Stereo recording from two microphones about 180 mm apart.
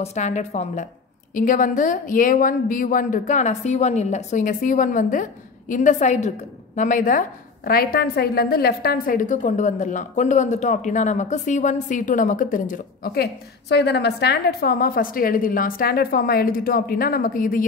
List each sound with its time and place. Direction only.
0.0 s a woman's voice: 40° left (ahead or behind)